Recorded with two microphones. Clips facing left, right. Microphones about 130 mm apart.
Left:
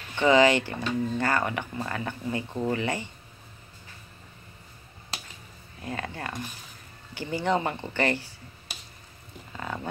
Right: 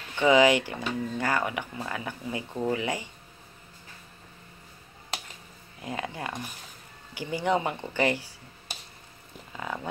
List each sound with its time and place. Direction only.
0.1 s speech: 10° right (ahead or behind)
5.8 s speech: 15° right (ahead or behind)
9.5 s a sound: 10° right (ahead or behind)